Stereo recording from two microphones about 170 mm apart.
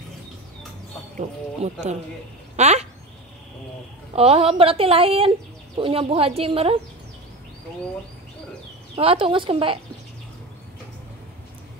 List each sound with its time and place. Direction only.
1.6 s speech: 40° right (ahead or behind)
2.5 s a sound: 40° right (ahead or behind)
4.1 s speech: 35° right (ahead or behind)
8.9 s speech: 30° right (ahead or behind)